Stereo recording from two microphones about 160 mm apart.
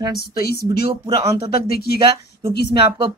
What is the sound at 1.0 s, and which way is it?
Speech, 20° right (ahead or behind).